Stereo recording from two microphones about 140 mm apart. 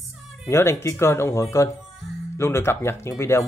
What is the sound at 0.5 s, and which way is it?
Speech, 20° left (ahead or behind).